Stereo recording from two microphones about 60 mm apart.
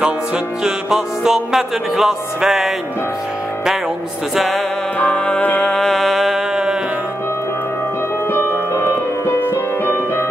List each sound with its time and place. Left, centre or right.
0.7 s music: centre
4.9 s music: left
5.7 s music: centre
6.5 s music: centre
8.3 s music: left